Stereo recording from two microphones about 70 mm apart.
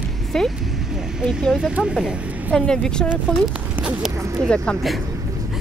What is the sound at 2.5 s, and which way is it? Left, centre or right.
Speech, centre.